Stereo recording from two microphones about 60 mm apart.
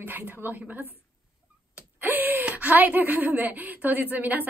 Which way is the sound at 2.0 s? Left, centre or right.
Right.